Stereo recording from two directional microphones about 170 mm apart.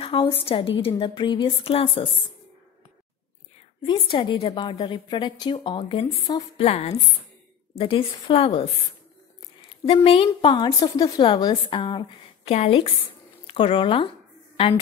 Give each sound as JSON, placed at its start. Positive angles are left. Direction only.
{"t": 0.0, "sound": "a sound", "side_deg": 30}
{"t": 0.4, "sound": "a woman's voice", "side_deg": 35}
{"t": 3.8, "sound": "a woman's voice", "side_deg": 30}
{"t": 6.6, "sound": "a woman's voice", "side_deg": 40}